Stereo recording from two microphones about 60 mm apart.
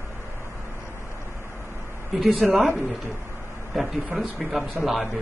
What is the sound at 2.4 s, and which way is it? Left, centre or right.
Speech, centre.